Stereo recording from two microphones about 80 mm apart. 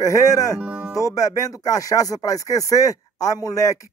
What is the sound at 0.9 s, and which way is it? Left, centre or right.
Speech, left.